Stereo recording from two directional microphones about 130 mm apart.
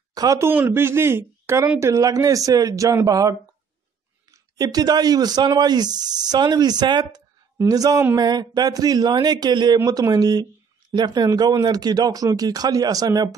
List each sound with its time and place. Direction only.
0.1 s speech: 30° right (ahead or behind)
0.5 s speech: 15° right (ahead or behind)